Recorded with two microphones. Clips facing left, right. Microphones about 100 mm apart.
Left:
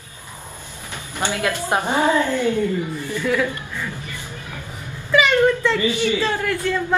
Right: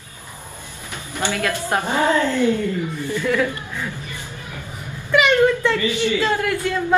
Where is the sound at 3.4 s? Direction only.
15° right (ahead or behind).